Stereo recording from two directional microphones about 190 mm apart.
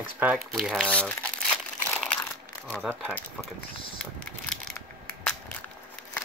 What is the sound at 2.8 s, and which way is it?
Speech, 10° right (ahead or behind).